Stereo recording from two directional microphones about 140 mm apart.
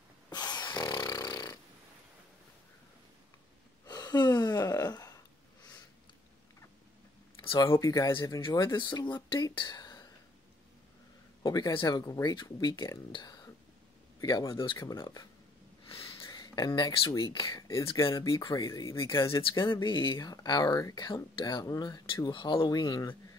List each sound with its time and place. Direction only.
0.3 s snoring: 30° left (ahead or behind)
3.8 s gasp: 30° left (ahead or behind)
7.6 s speech: 20° left (ahead or behind)
8.1 s speech: 35° left (ahead or behind)
11.4 s speech: 25° left (ahead or behind)
15.9 s a sound: 35° left (ahead or behind)
17.2 s speech: 35° left (ahead or behind)
17.5 s speech: 25° left (ahead or behind)